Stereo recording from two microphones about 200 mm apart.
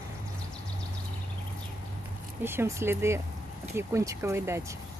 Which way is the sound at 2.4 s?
10° right (ahead or behind).